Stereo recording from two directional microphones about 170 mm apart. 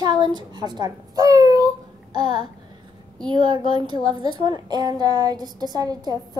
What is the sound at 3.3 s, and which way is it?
A child's voice, 25° right (ahead or behind).